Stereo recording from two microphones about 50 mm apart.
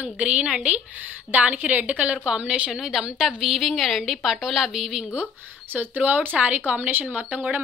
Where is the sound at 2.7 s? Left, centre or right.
Centre.